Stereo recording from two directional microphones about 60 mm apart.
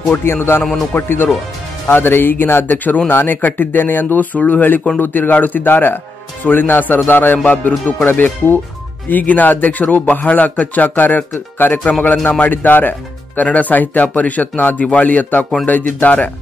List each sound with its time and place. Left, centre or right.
0.1 s speech: left
8.1 s speech: left
9.1 s speech: left